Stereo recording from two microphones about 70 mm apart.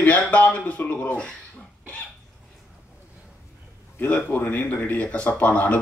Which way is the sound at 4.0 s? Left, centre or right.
Left.